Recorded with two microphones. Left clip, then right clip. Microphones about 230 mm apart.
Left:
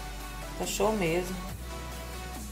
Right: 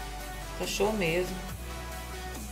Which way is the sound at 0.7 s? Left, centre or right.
Left.